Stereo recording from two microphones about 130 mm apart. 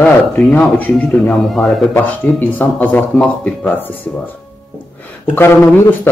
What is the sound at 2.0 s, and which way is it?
Speech, 15° left (ahead or behind).